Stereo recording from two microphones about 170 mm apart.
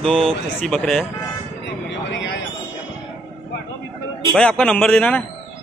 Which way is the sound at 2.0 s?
90° left.